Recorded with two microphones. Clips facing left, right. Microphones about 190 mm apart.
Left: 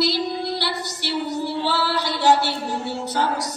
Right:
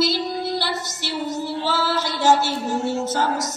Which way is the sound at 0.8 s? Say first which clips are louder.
Left 1 dB; 45° right (ahead or behind).